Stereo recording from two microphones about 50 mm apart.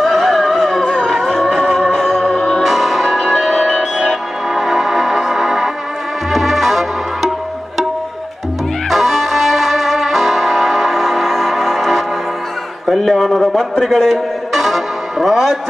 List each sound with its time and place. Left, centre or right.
0.0 s music: centre
2.2 s music: centre
2.6 s music: centre
8.9 s music: centre
12.8 s a sound: centre
14.5 s music: centre